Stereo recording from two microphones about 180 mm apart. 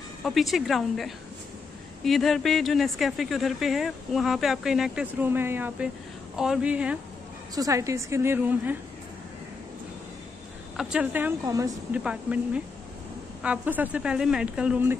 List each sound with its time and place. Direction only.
0.2 s a woman's voice: centre (ahead or behind)
7.5 s a woman's voice: 20° right (ahead or behind)
10.8 s a woman's voice: 5° right (ahead or behind)
11.9 s a woman's voice: 5° right (ahead or behind)